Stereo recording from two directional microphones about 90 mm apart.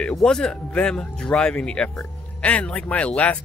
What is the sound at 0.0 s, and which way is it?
Speech, 5° left (ahead or behind).